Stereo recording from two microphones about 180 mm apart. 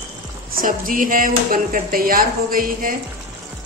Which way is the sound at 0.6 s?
50° right (ahead or behind).